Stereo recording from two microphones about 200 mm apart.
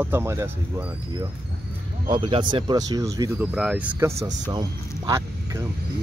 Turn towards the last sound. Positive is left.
turn(degrees=-15)  # may be behind; listen again after turning